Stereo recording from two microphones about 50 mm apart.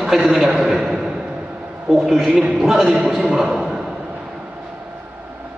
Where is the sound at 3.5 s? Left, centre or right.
Centre.